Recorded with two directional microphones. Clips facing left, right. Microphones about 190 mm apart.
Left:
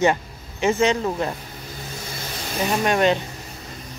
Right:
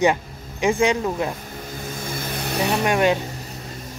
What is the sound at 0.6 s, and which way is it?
Speech, 15° right (ahead or behind).